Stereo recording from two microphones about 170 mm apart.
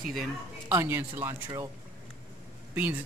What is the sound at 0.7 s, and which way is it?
Speech, 15° right (ahead or behind).